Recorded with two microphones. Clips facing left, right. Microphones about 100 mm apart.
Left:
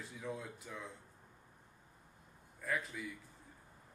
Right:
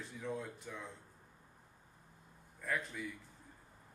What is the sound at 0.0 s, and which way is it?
Speech, centre (ahead or behind).